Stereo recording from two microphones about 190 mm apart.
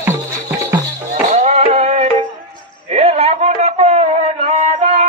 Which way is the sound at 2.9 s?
35° right (ahead or behind).